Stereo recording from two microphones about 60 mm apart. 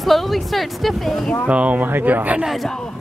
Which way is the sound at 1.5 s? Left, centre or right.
Right.